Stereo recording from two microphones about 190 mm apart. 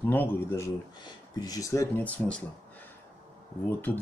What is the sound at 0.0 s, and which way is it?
Speech, 10° left (ahead or behind).